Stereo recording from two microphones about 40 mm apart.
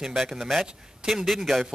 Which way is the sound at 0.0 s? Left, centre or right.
Centre.